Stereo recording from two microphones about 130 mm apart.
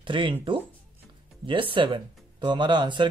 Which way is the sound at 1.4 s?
40° right (ahead or behind).